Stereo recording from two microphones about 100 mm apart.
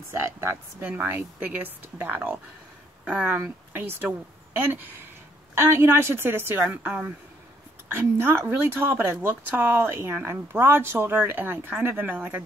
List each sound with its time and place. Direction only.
0.1 s speech: 25° right (ahead or behind)
0.8 s speech: 15° right (ahead or behind)
5.5 s speech: 25° right (ahead or behind)